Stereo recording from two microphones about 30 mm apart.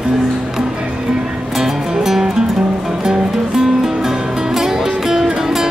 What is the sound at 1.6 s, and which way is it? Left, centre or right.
Music, centre.